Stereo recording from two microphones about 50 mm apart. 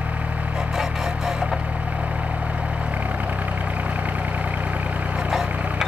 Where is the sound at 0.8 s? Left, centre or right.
Centre.